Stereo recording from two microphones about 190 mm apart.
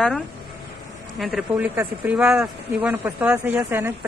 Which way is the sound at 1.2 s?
5° right (ahead or behind).